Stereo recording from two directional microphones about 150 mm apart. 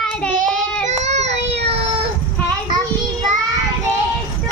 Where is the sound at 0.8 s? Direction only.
50° right (ahead or behind).